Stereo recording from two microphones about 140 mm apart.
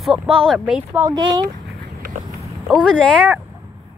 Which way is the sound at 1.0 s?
25° right (ahead or behind).